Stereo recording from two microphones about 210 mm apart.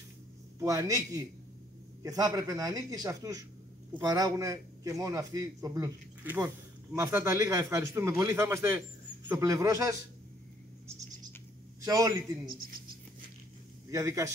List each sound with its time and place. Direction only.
0.6 s a man's voice: 15° right (ahead or behind)
11.8 s a man's voice: 15° right (ahead or behind)
13.8 s a man's voice: 15° right (ahead or behind)